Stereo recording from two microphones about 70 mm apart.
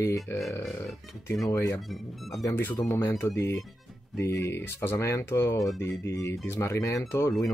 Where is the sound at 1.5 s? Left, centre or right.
Left.